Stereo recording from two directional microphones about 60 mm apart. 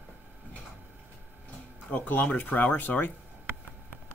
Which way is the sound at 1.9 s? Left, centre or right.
Left.